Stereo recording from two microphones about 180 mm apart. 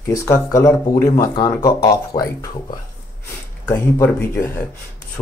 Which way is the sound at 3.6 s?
15° left (ahead or behind).